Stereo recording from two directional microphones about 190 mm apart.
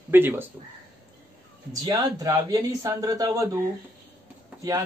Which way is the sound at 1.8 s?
20° right (ahead or behind).